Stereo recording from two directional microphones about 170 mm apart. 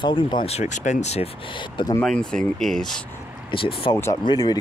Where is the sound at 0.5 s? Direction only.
45° left (ahead or behind); by 1.9 s 30° left (ahead or behind).